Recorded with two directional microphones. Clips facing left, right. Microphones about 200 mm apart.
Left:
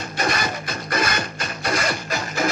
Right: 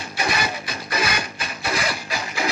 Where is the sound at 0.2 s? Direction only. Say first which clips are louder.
Left 1 dB; 45° left (ahead or behind).